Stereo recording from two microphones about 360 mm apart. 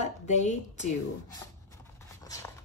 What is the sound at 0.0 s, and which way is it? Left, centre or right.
Speech, centre.